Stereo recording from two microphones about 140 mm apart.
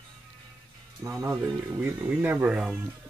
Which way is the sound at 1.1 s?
25° right (ahead or behind).